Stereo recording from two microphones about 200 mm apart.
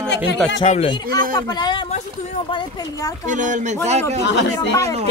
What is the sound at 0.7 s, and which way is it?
Speech, 30° left (ahead or behind).